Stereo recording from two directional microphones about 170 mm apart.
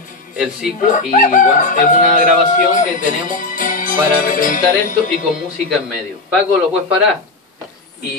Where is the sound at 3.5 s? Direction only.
50° left (ahead or behind).